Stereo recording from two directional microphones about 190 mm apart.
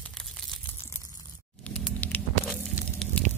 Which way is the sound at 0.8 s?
15° left (ahead or behind).